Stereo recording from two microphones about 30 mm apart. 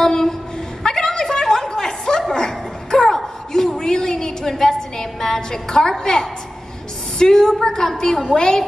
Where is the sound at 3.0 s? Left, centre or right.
Centre.